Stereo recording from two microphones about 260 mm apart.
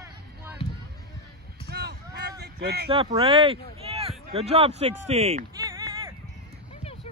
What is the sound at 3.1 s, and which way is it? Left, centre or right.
Speech, right.